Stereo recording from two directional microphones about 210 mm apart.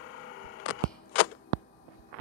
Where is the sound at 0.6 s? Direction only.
60° left (ahead or behind).